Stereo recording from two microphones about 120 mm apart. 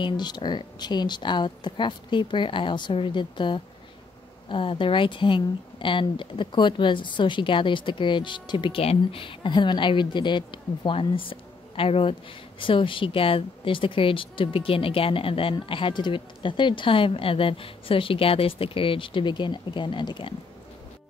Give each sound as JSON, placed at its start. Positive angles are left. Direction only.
{"t": 0.0, "sound": "a woman's voice", "side_deg": 40}